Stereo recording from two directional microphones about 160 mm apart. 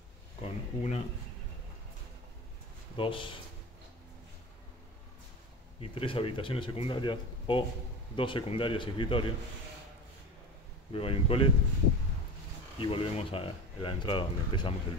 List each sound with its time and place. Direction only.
0.4 s a sound: 45° left (ahead or behind)
3.0 s speech: 30° left (ahead or behind)
5.8 s speech: 35° left (ahead or behind)
10.9 s speech: 35° left (ahead or behind)
12.7 s speech: 35° left (ahead or behind)